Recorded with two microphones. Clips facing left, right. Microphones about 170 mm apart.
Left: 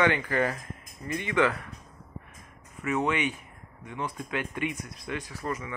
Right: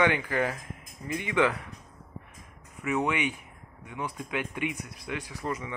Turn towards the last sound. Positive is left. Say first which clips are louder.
# even
turn(degrees=-20)  # may be behind; listen again after turning